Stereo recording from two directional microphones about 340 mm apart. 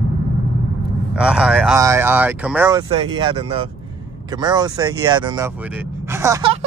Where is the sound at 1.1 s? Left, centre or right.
Centre.